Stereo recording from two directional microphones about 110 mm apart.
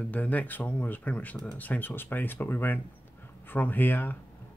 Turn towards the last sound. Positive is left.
turn(degrees=15)  # may be behind; listen again after turning